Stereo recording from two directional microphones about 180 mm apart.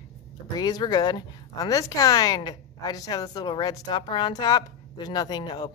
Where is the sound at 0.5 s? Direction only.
20° left (ahead or behind).